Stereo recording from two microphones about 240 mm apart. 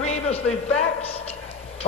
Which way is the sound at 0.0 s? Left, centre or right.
Left.